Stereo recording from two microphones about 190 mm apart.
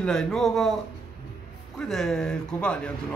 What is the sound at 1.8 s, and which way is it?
Speech, centre (ahead or behind).